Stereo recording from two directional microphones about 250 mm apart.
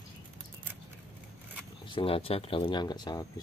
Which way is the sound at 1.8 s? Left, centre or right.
Left.